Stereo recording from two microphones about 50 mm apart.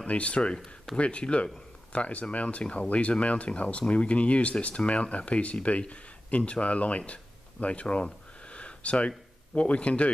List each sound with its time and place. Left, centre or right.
0.0 s speech: left
7.6 s a sound: left
9.5 s speech: left